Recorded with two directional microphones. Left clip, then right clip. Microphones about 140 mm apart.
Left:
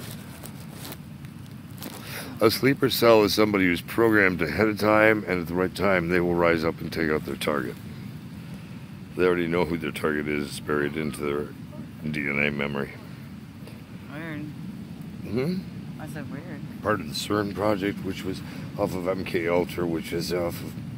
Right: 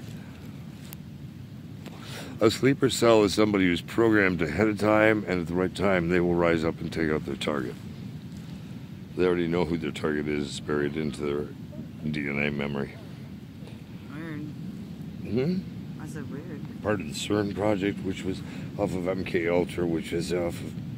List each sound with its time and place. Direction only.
2.1 s speech: 20° right (ahead or behind)
9.1 s speech: 10° right (ahead or behind)
14.1 s vehicle: 45° left (ahead or behind)
15.3 s speech: 20° right (ahead or behind)
16.8 s speech: 20° right (ahead or behind)